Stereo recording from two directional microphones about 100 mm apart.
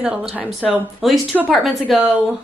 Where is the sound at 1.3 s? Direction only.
15° right (ahead or behind).